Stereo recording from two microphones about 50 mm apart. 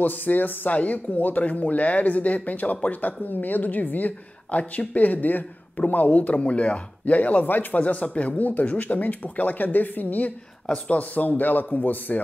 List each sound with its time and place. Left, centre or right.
0.0 s speech: left